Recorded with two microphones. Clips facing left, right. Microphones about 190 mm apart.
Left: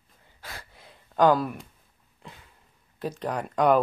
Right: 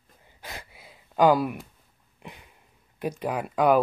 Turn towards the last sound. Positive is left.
turn(degrees=-5)  # may be behind; listen again after turning